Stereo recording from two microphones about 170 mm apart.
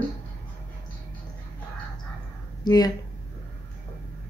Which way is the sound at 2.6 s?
20° left (ahead or behind).